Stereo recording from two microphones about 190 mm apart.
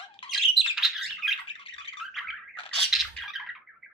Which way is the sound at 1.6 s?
30° left (ahead or behind).